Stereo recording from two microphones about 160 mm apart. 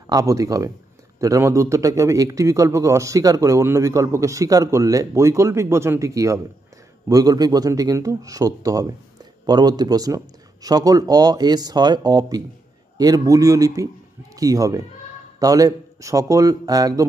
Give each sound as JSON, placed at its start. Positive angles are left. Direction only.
{"t": 0.0, "sound": "a man's voice", "side_deg": -20}